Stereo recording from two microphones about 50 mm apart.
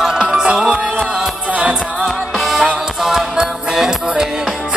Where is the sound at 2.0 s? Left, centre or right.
Centre.